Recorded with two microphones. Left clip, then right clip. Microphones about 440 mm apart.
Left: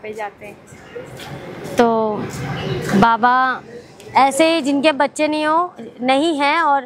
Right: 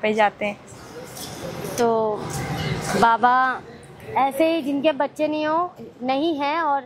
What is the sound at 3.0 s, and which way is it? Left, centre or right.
A woman's voice, left.